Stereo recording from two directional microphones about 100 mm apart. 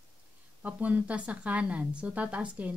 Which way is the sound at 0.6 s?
15° right (ahead or behind).